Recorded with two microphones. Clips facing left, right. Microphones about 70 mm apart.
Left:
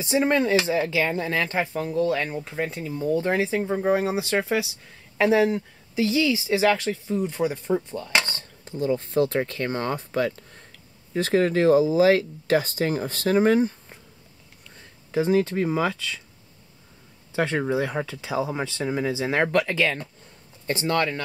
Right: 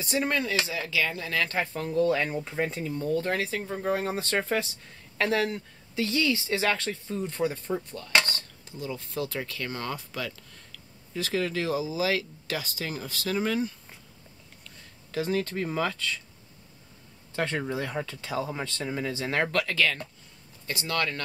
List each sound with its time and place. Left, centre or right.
0.0 s speech: left; by 5.2 s centre
5.2 s speech: centre
8.6 s speech: left
15.0 s speech: centre
17.3 s speech: centre
20.6 s speech: left